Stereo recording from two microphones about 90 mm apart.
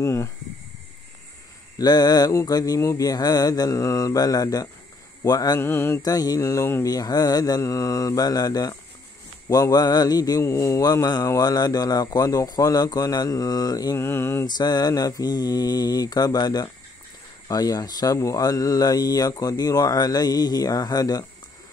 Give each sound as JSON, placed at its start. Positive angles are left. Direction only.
{"t": 0.0, "sound": "mantra", "side_deg": 30}
{"t": 1.8, "sound": "speech", "side_deg": 50}
{"t": 5.6, "sound": "mantra", "side_deg": 25}
{"t": 6.0, "sound": "mantra", "side_deg": 45}
{"t": 6.9, "sound": "speech", "side_deg": 45}
{"t": 10.4, "sound": "mantra", "side_deg": 30}
{"t": 10.8, "sound": "speech", "side_deg": 45}
{"t": 13.9, "sound": "mantra", "side_deg": 30}
{"t": 14.4, "sound": "speech", "side_deg": 50}